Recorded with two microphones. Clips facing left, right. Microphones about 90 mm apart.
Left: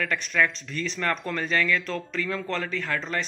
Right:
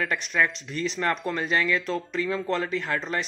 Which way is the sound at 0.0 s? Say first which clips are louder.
Even; 20° right (ahead or behind).